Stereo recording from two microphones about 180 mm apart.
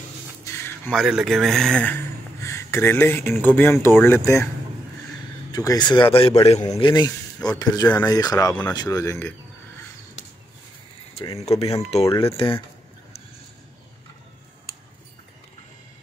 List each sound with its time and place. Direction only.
0.5 s a sound: 15° left (ahead or behind)
0.9 s speech: centre (ahead or behind)
5.5 s a man's voice: 20° left (ahead or behind)
11.1 s speech: 35° left (ahead or behind)